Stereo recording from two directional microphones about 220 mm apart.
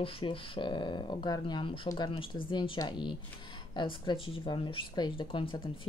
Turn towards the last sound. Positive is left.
turn(degrees=25)  # may be behind; listen again after turning